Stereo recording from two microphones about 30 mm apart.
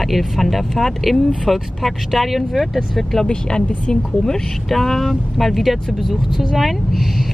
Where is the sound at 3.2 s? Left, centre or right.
Left.